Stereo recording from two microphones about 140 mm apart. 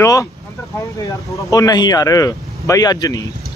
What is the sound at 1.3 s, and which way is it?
A man's voice, 25° left (ahead or behind).